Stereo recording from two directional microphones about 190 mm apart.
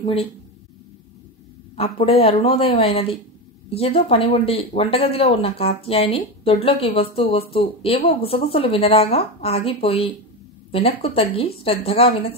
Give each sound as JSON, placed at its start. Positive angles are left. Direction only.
{"t": 0.0, "sound": "speech", "side_deg": 30}
{"t": 1.8, "sound": "speech", "side_deg": 30}